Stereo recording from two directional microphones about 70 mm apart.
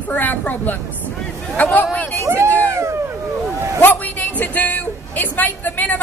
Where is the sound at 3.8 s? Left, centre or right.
Left.